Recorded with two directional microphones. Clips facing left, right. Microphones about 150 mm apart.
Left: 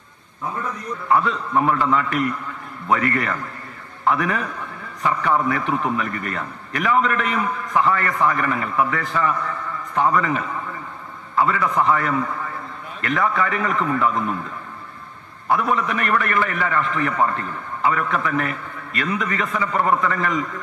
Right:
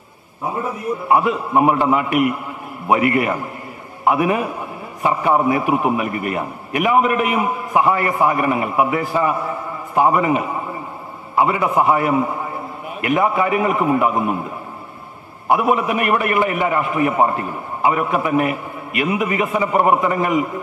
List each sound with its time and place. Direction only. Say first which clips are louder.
0.4 s a man's voice: right 4 dB; 25° right (ahead or behind)